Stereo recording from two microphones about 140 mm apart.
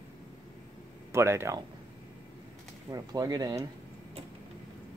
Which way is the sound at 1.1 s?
20° right (ahead or behind).